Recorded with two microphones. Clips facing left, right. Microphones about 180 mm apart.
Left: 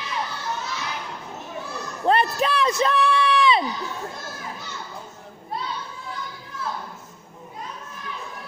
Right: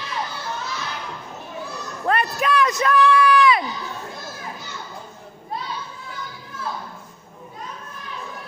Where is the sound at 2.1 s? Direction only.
30° left (ahead or behind).